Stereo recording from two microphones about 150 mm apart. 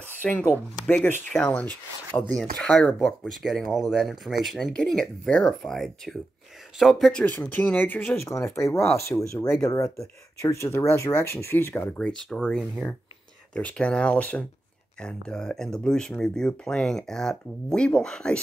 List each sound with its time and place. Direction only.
0.2 s speech: 5° left (ahead or behind)